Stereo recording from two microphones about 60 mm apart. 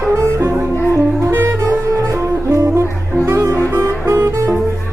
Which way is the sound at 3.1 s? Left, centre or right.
Right.